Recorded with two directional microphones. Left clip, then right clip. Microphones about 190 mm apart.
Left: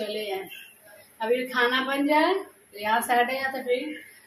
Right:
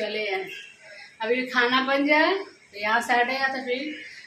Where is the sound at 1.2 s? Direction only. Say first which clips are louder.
Right 1 dB; 5° right (ahead or behind).